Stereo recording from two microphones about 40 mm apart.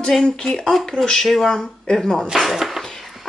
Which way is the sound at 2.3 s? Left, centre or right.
Centre.